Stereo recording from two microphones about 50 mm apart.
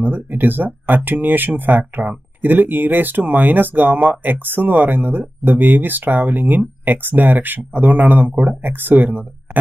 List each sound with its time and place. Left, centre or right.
0.0 s speech: right